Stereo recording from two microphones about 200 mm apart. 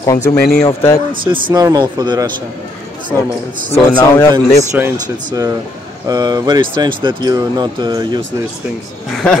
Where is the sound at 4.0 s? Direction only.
15° left (ahead or behind).